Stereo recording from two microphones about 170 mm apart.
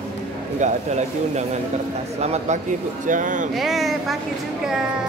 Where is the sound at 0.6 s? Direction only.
40° right (ahead or behind).